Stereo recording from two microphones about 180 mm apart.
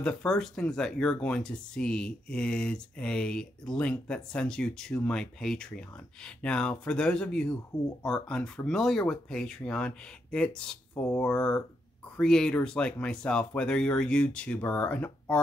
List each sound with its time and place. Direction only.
0.0 s speech: 5° left (ahead or behind)